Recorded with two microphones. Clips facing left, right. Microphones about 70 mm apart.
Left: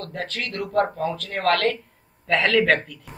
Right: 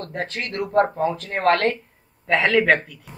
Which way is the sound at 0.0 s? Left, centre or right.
Right.